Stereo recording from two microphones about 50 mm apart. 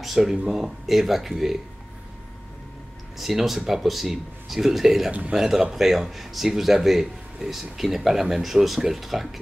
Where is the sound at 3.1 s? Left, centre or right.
Centre.